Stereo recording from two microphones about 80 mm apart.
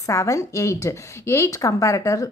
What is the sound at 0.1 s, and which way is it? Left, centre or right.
A woman's voice, left.